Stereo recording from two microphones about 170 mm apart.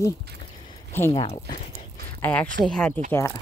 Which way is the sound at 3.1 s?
15° left (ahead or behind).